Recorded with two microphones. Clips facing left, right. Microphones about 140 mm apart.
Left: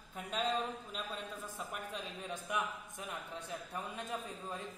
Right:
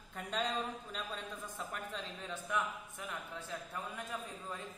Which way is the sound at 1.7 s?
15° left (ahead or behind).